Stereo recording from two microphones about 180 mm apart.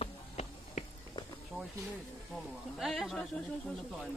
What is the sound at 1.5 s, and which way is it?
Snake, 5° left (ahead or behind).